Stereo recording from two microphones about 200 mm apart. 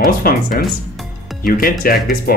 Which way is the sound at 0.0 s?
50° left (ahead or behind).